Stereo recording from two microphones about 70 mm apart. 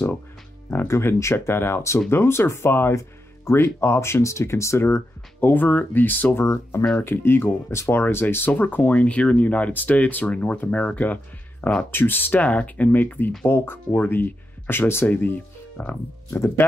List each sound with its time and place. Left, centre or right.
0.8 s speech: left
5.5 s speech: left
6.5 s speech: left
7.0 s speech: left
11.9 s speech: left
16.3 s speech: left